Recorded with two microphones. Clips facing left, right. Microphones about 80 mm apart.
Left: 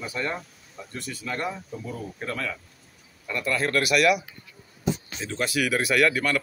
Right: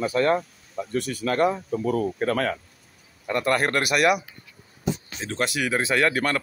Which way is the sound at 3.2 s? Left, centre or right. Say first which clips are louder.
Right 4 dB; right.